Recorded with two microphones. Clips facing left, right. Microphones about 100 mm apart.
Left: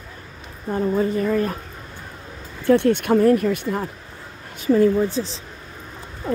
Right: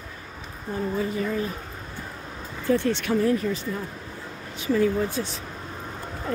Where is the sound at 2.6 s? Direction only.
65° left (ahead or behind).